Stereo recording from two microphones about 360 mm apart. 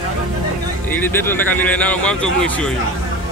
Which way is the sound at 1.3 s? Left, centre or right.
Centre.